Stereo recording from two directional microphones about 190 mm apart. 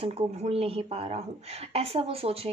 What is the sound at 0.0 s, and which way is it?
Speech, 30° right (ahead or behind).